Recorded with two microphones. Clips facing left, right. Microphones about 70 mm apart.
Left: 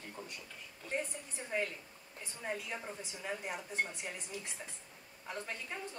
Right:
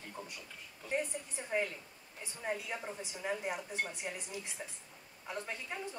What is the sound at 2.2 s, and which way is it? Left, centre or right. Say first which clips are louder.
Speech: right 2 dB; centre.